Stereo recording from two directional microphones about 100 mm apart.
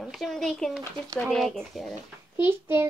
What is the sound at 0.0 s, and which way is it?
A child's voice, centre (ahead or behind).